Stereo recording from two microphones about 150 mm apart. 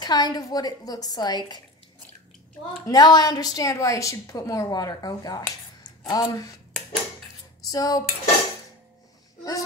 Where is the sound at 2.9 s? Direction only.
25° left (ahead or behind).